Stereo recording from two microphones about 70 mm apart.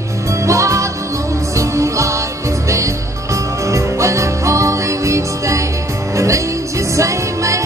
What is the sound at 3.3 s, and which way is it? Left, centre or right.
Music, right.